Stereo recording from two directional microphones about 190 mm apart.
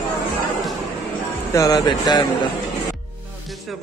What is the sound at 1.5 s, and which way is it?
Speech, 20° left (ahead or behind).